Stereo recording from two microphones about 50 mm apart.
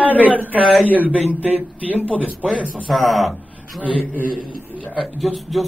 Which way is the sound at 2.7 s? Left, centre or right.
Centre.